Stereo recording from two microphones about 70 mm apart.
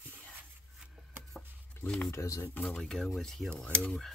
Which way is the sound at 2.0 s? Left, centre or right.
Left.